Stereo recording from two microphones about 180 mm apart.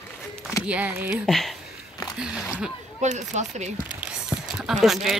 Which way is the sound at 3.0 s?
40° right (ahead or behind).